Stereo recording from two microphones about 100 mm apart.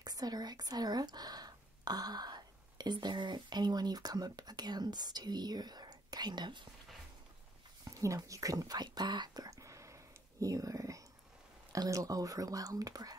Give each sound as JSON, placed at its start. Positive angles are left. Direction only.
{"t": 0.0, "sound": "speech", "side_deg": -40}
{"t": 7.8, "sound": "whispering", "side_deg": -30}
{"t": 11.7, "sound": "speech", "side_deg": -35}